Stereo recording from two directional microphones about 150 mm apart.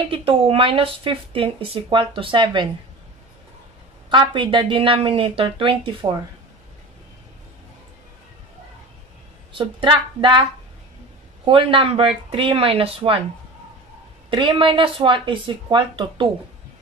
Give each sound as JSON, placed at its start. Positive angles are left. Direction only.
{"t": 0.1, "sound": "speech", "side_deg": -40}
{"t": 4.1, "sound": "speech", "side_deg": -35}
{"t": 9.5, "sound": "speech", "side_deg": -30}
{"t": 11.4, "sound": "speech", "side_deg": -35}
{"t": 14.3, "sound": "speech", "side_deg": -35}